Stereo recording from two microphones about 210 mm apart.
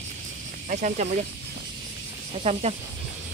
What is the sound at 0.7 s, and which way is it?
Speech, 35° right (ahead or behind).